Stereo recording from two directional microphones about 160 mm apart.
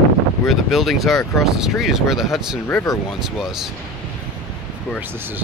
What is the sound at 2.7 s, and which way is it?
Speech, 20° left (ahead or behind).